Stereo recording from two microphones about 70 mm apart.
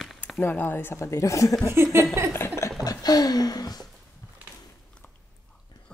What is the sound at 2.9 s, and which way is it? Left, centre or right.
Speech, left.